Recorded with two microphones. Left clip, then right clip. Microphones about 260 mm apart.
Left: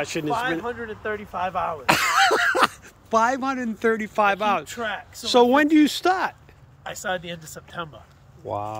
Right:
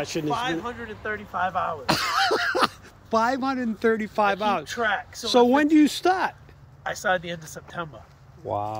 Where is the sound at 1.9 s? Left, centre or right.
Centre.